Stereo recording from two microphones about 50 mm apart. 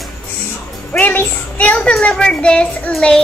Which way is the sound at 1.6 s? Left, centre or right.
Left.